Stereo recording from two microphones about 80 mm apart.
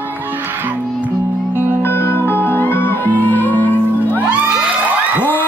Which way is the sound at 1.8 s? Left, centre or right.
Left.